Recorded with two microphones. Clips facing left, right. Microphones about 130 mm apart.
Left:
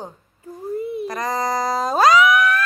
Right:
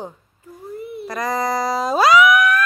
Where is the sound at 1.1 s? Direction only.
35° left (ahead or behind).